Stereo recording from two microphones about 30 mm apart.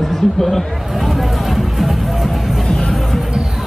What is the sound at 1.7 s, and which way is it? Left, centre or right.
Music, centre.